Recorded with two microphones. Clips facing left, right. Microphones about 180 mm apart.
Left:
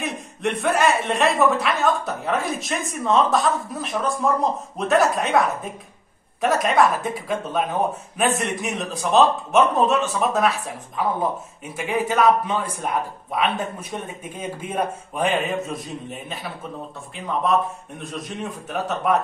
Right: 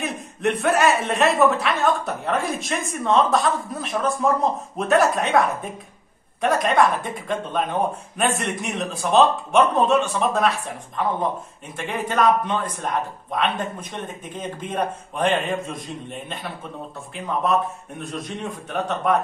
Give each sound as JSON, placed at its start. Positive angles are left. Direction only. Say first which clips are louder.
{"t": 0.0, "sound": "a man's voice", "louder": "right 2 dB", "side_deg": 0}